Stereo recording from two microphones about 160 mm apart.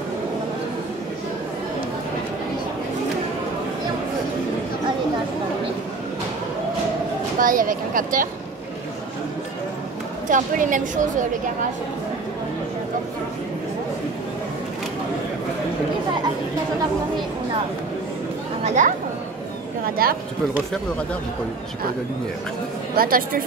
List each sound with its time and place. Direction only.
7.3 s speech: 55° right (ahead or behind)
10.2 s a woman's voice: 55° right (ahead or behind)
18.6 s speech: 50° right (ahead or behind)
20.0 s speech: 70° right (ahead or behind)
22.9 s speech: 65° right (ahead or behind)